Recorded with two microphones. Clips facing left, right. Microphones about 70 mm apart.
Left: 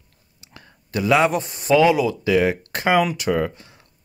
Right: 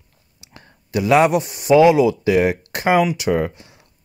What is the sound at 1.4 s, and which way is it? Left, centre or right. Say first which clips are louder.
Speech: right 2 dB; left.